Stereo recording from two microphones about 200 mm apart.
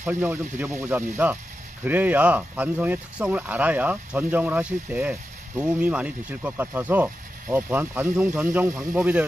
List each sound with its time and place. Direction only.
0.0 s speech: 10° right (ahead or behind)